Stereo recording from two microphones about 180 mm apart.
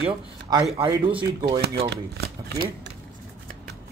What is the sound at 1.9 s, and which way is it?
Speech, 60° right (ahead or behind).